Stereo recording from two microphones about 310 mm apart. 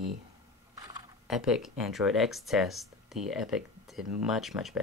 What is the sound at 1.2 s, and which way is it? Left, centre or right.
Speech, centre.